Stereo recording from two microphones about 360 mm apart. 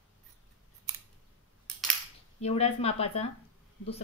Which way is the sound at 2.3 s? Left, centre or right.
Centre.